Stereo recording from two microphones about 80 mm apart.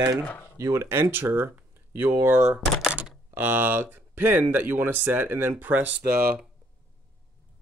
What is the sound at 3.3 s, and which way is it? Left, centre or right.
Speech, right.